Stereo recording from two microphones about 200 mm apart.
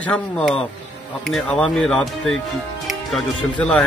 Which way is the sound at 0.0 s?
5° left (ahead or behind).